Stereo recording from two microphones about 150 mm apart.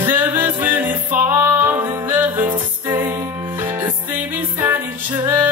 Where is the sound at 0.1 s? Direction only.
10° right (ahead or behind).